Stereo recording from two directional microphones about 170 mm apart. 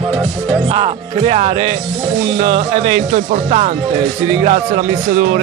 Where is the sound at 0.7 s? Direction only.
30° right (ahead or behind).